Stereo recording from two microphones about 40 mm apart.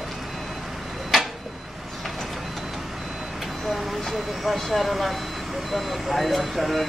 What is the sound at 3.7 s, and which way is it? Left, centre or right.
Speech, centre.